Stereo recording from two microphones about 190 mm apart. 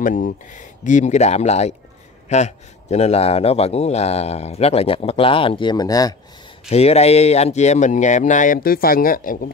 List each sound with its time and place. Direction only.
0.0 s a man's voice: 45° left (ahead or behind); by 6.1 s 20° left (ahead or behind)
6.7 s a man's voice: 35° left (ahead or behind)